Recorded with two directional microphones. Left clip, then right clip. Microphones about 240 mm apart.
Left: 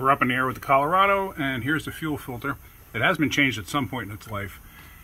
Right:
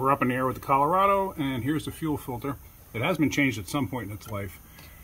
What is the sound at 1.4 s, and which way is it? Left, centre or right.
Speech, centre.